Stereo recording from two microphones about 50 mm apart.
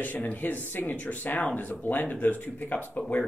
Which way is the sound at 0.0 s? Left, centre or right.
Left.